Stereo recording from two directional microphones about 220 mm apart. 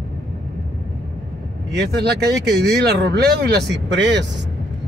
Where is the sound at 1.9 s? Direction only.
45° right (ahead or behind).